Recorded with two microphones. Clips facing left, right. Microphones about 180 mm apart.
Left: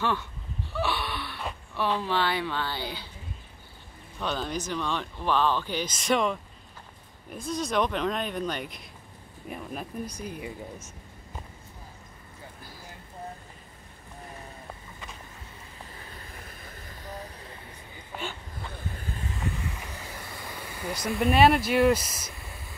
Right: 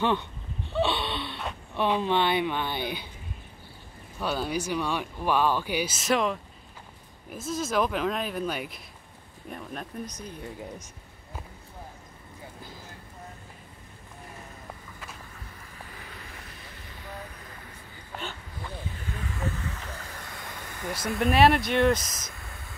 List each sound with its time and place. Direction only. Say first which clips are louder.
0.0 s speech: right 3 dB; 20° right (ahead or behind)
0.7 s a sound: right 3 dB; 25° right (ahead or behind)
1.8 s speech: right 3 dB; 20° right (ahead or behind)
4.2 s speech: right 2 dB; 10° right (ahead or behind); by 10.5 s 10° left (ahead or behind)
16.4 s vehicle: left 1 dB; 50° left (ahead or behind)
19.2 s vehicle: right 1 dB; 15° left (ahead or behind)